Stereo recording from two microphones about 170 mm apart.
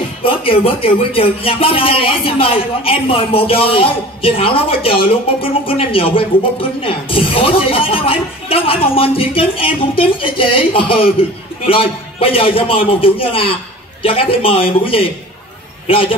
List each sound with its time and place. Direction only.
0.2 s speech: 30° left (ahead or behind)